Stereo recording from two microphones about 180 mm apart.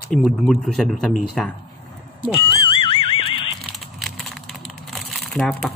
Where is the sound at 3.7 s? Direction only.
Centre (ahead or behind).